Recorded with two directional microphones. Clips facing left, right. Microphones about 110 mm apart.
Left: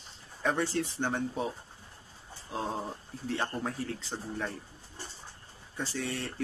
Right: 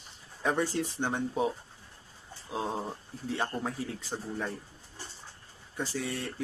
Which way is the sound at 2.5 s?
10° right (ahead or behind).